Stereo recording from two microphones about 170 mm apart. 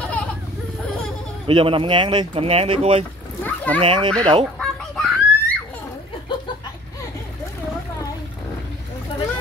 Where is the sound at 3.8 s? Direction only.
30° right (ahead or behind).